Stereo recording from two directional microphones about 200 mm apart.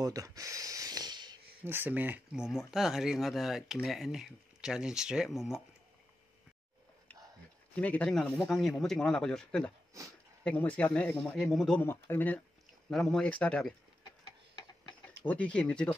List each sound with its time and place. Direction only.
0.0 s a sound: 15° right (ahead or behind)
1.6 s speech: 10° right (ahead or behind)
7.7 s speech: 5° left (ahead or behind)
15.2 s speech: 5° left (ahead or behind)